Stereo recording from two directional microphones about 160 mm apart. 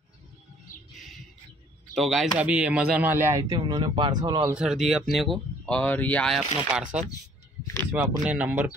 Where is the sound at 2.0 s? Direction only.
Centre (ahead or behind); by 4.6 s 25° right (ahead or behind).